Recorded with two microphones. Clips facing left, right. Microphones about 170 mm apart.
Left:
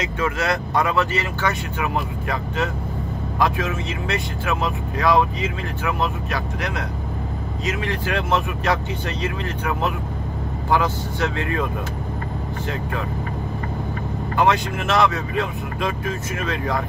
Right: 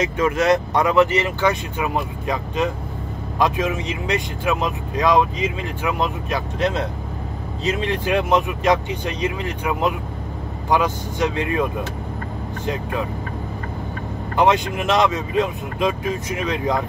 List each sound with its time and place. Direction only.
0.2 s speech: 20° right (ahead or behind)
14.3 s speech: 20° right (ahead or behind)